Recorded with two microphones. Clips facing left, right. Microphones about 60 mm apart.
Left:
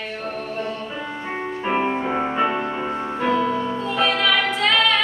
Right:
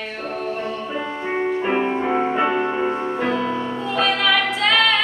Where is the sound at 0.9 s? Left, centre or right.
Centre.